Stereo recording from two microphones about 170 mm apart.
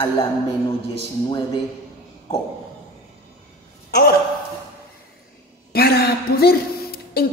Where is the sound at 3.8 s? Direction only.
60° left (ahead or behind).